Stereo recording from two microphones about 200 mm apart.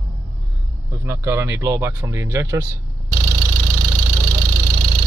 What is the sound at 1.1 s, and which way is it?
Speech, 15° right (ahead or behind).